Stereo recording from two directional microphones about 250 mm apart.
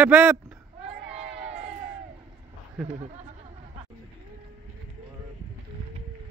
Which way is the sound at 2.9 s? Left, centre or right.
Right.